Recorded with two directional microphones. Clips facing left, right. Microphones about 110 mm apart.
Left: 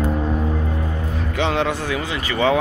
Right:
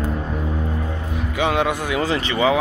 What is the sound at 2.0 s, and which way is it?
Speech, 35° right (ahead or behind).